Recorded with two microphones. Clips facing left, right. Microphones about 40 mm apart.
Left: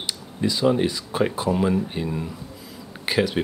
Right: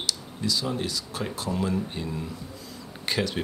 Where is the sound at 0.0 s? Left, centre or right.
Left.